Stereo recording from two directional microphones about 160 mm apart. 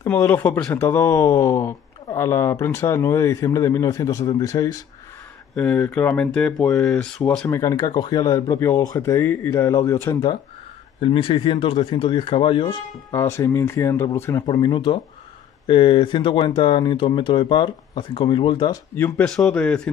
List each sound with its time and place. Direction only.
0.0 s speech: 15° left (ahead or behind)
5.6 s speech: 10° left (ahead or behind)
7.6 s speech: 25° left (ahead or behind)
11.0 s speech: 35° left (ahead or behind)
13.1 s speech: 20° left (ahead or behind)
14.4 s speech: 30° left (ahead or behind)
18.9 s speech: 10° left (ahead or behind)